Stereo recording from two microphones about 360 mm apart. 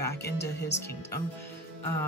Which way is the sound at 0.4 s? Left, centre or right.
Left.